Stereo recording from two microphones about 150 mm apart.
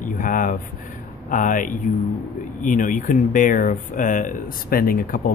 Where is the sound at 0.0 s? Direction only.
65° left (ahead or behind).